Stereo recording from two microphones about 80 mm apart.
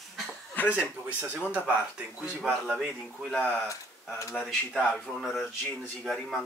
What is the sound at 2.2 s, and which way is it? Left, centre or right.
Speech, centre.